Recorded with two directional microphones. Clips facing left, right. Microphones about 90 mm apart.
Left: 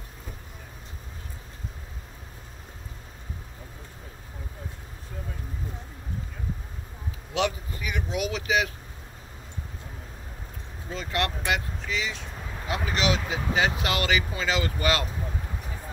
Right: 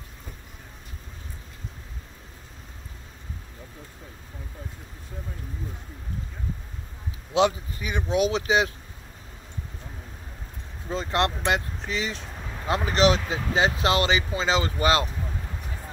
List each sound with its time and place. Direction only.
7.3 s speech: 25° right (ahead or behind)
10.9 s speech: 30° right (ahead or behind)